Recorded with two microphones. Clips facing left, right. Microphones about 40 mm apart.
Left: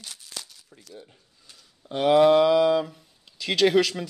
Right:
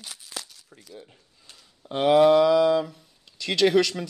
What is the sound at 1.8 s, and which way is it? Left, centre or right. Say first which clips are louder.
Speech: right 1 dB; right.